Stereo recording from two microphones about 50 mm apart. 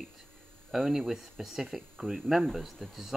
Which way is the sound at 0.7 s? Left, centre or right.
Centre.